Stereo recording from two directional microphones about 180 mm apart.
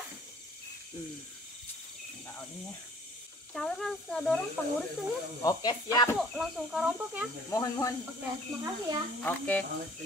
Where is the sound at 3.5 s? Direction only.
Centre (ahead or behind).